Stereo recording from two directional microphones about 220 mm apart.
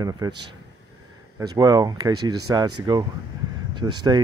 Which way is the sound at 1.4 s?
15° right (ahead or behind).